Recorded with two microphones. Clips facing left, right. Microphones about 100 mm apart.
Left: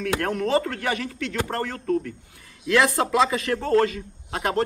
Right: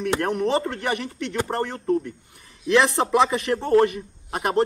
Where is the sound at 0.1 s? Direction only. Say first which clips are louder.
Even; 20° right (ahead or behind).